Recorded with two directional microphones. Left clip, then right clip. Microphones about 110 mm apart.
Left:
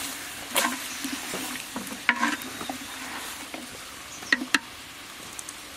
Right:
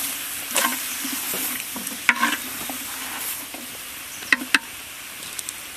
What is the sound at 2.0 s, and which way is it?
Stir, 10° right (ahead or behind).